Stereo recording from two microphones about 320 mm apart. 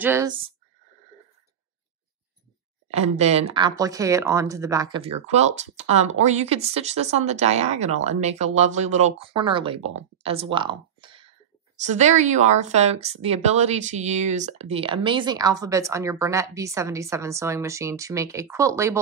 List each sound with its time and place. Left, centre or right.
0.0 s speech: centre
2.9 s speech: centre
10.2 s a sound: centre
11.8 s speech: right